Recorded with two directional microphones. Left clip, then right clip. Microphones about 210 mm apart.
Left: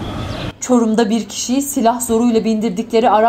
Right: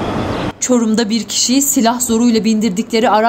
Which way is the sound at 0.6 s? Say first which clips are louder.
Left 2 dB; 45° right (ahead or behind).